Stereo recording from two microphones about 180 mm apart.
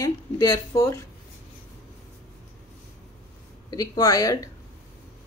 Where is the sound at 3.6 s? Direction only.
20° left (ahead or behind).